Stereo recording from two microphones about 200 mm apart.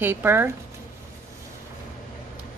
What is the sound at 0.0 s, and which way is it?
Speech, 10° right (ahead or behind).